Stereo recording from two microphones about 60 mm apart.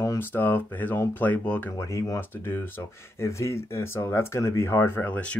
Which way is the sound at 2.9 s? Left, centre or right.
Left.